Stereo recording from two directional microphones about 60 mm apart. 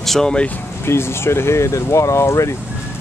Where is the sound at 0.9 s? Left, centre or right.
Left.